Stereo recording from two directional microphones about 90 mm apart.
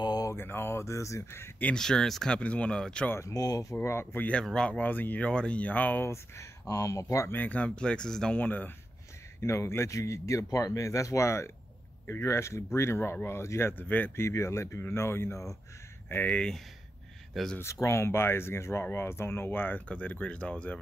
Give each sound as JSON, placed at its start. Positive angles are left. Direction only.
{"t": 0.0, "sound": "mantra", "side_deg": 50}
{"t": 0.3, "sound": "speech", "side_deg": 25}
{"t": 1.7, "sound": "speech", "side_deg": 5}
{"t": 3.1, "sound": "speech", "side_deg": 30}
{"t": 3.3, "sound": "speech", "side_deg": 45}
{"t": 3.8, "sound": "speech", "side_deg": 30}
{"t": 6.0, "sound": "speech", "side_deg": 30}
{"t": 7.3, "sound": "speech", "side_deg": 15}
{"t": 8.4, "sound": "speech", "side_deg": 20}
{"t": 9.4, "sound": "speech", "side_deg": 30}
{"t": 17.6, "sound": "speech", "side_deg": 30}